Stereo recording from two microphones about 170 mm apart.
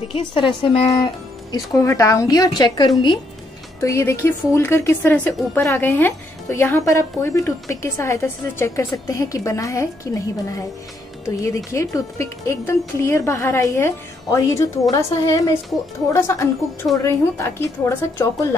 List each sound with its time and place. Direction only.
0.1 s a woman's voice: 30° left (ahead or behind)
1.5 s a woman's voice: 20° left (ahead or behind)
11.2 s a woman's voice: 15° left (ahead or behind)